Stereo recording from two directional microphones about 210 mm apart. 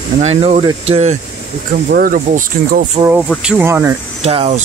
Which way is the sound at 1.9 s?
45° right (ahead or behind).